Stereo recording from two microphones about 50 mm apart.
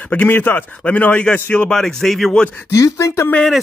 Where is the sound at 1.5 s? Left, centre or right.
Centre.